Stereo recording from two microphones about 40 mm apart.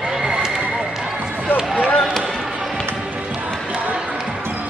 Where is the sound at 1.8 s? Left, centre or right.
Left.